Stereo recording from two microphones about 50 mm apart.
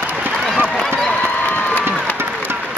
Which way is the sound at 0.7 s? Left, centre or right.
Centre.